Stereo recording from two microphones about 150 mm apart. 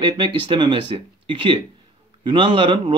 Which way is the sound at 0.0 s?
35° right (ahead or behind).